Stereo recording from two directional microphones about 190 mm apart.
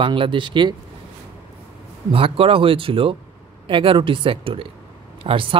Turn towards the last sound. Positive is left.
turn(degrees=-25)  # may be behind; listen again after turning